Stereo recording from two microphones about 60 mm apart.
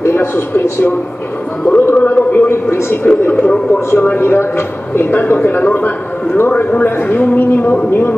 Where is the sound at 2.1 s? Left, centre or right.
Left.